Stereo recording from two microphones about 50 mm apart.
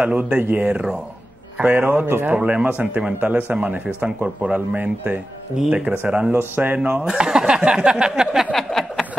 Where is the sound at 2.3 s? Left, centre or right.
Right.